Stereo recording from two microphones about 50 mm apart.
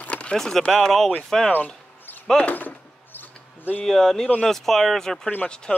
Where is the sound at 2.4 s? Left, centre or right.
Left.